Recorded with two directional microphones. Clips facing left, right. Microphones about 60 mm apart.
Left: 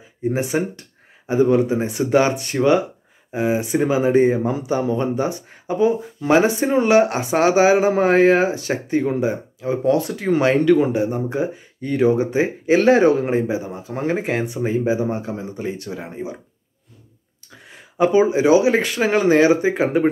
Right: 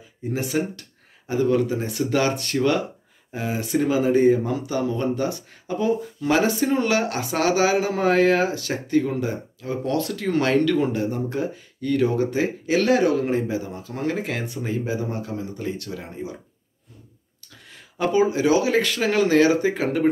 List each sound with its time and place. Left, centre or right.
0.3 s speech: left
17.5 s speech: left